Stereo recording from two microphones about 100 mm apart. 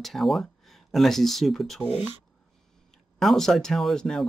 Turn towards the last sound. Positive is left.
turn(degrees=5)  # may be behind; listen again after turning